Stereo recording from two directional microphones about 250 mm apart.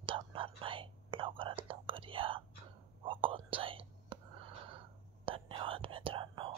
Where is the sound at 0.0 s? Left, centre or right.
Right.